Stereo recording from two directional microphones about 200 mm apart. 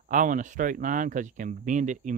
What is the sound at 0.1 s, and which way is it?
Speech, 40° right (ahead or behind).